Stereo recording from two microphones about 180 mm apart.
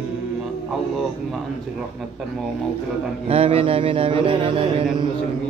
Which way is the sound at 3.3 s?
30° right (ahead or behind).